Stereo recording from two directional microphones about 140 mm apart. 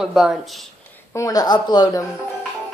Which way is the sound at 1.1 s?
25° left (ahead or behind).